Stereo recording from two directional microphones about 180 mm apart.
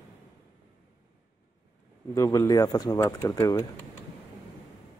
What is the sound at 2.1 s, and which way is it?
Speech, 15° left (ahead or behind).